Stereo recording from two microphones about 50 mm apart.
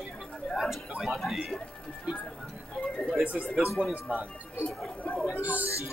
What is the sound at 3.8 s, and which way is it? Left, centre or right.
Speech, centre.